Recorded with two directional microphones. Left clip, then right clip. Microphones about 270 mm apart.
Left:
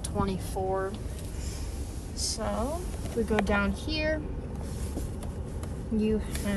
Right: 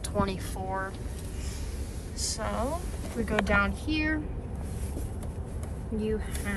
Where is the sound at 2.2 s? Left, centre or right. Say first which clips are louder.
Even; left.